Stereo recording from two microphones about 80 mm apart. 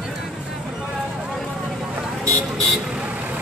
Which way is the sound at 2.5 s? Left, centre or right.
Centre.